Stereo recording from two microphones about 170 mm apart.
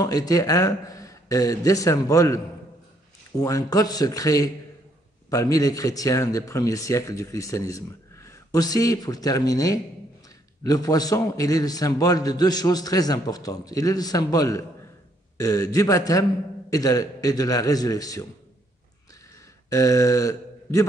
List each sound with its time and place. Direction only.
0.0 s a man's voice: 20° left (ahead or behind)
19.7 s speech: 20° left (ahead or behind)